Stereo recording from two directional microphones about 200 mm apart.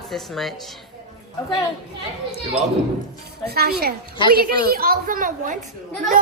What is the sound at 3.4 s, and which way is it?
A woman's voice, 50° right (ahead or behind).